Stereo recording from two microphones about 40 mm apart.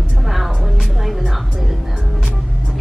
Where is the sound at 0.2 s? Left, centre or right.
Centre.